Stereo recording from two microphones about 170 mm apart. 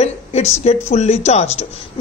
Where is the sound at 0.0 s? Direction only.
40° left (ahead or behind).